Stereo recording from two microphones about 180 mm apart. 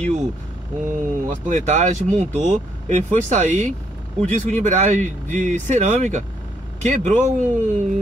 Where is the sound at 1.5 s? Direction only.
40° right (ahead or behind).